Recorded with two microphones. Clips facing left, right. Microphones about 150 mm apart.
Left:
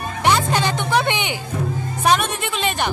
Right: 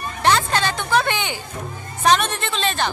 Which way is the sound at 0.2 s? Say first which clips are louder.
Left 1 dB; 15° left (ahead or behind).